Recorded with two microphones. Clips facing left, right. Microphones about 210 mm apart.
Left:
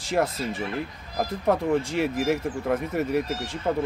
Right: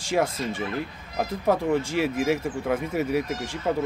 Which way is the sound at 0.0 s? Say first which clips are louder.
Even; centre (ahead or behind).